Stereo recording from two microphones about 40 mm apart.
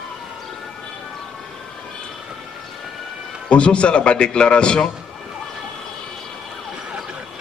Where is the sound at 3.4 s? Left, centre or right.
Left.